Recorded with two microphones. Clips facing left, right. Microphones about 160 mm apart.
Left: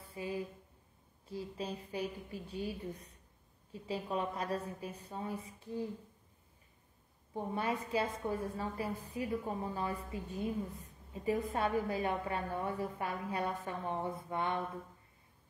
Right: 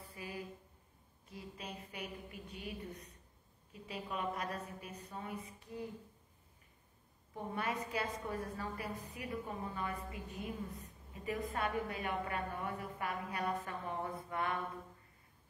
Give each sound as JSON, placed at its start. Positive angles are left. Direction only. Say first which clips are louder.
{"t": 0.0, "sound": "a woman's voice", "louder": "left 6 dB", "side_deg": 25}
{"t": 7.3, "sound": "a woman's voice", "louder": "left 3 dB", "side_deg": 30}